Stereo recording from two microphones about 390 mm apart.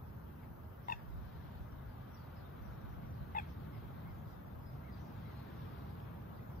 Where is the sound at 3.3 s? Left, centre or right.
Left.